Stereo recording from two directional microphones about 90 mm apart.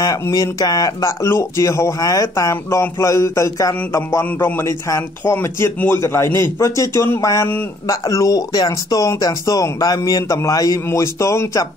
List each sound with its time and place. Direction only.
0.0 s a man's voice: 40° left (ahead or behind)
10.9 s a man's voice: 30° left (ahead or behind)